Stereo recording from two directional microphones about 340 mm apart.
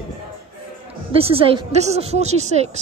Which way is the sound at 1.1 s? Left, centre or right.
Centre.